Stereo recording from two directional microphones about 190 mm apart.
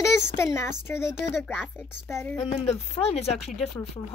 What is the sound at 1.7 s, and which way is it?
Speech, 10° left (ahead or behind).